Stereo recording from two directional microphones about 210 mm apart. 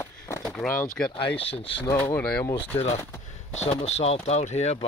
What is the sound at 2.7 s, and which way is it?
Speech, 30° left (ahead or behind).